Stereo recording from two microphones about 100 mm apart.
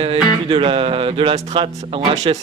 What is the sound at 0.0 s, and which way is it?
Music, 65° right (ahead or behind).